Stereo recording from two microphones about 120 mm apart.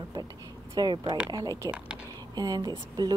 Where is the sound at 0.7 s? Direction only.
35° right (ahead or behind).